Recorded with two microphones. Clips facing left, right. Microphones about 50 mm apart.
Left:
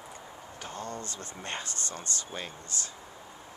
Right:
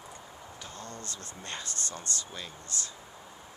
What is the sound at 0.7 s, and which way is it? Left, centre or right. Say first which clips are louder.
Speech: left 6 dB; left.